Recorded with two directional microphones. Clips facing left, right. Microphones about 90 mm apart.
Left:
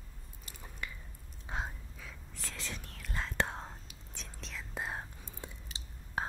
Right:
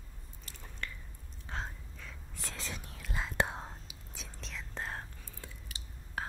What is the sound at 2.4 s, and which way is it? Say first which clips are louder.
Whispering: right 1 dB; 30° right (ahead or behind).